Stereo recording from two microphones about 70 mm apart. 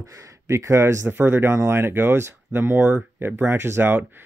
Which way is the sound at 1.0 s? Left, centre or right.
Right.